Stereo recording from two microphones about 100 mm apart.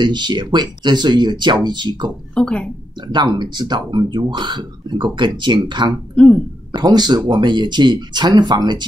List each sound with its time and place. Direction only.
0.0 s speech: 50° right (ahead or behind)
2.3 s speech: 10° left (ahead or behind)
3.1 s speech: 50° right (ahead or behind)
6.1 s speech: 10° left (ahead or behind)
6.7 s speech: 45° right (ahead or behind)